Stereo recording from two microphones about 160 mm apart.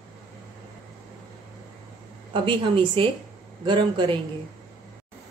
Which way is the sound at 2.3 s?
30° right (ahead or behind).